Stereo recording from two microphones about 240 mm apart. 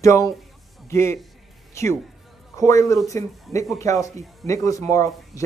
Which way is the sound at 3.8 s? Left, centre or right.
Centre.